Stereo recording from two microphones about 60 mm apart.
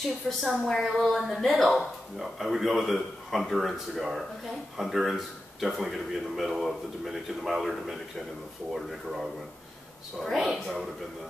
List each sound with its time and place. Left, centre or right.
0.4 s a woman's voice: centre